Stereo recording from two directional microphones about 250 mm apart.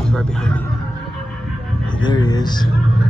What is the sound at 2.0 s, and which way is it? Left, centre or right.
Speech, centre.